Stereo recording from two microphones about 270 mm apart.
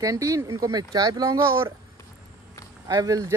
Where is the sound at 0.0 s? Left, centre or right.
Centre.